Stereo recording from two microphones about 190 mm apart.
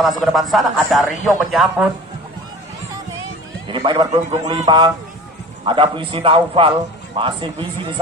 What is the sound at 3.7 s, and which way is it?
A man's voice, 25° right (ahead or behind).